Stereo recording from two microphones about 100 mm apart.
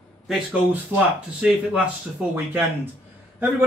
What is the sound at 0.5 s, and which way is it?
Speech, 15° right (ahead or behind).